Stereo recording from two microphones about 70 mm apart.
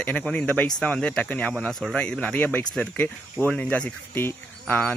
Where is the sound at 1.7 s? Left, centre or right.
Centre.